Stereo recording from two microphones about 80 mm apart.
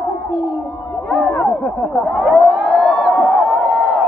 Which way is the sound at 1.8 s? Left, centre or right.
Centre.